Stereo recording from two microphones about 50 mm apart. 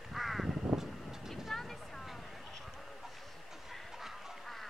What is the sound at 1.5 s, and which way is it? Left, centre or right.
Vehicle, centre.